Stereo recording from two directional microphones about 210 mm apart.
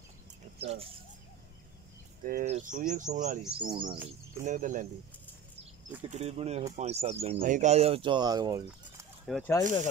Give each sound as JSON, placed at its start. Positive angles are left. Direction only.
{"t": 0.6, "sound": "speech", "side_deg": -30}
{"t": 2.2, "sound": "speech", "side_deg": -35}
{"t": 3.5, "sound": "speech", "side_deg": -20}
{"t": 4.4, "sound": "speech", "side_deg": -35}
{"t": 6.0, "sound": "speech", "side_deg": -30}
{"t": 9.2, "sound": "speech", "side_deg": 0}